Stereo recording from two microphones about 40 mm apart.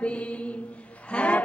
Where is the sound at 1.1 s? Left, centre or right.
Left.